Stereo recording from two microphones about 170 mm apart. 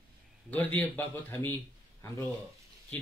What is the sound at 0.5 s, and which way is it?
A man's voice, 10° left (ahead or behind).